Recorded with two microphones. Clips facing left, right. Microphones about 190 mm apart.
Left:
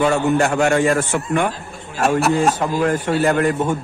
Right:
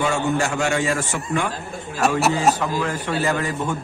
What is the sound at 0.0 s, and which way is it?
A man's voice, 60° left (ahead or behind).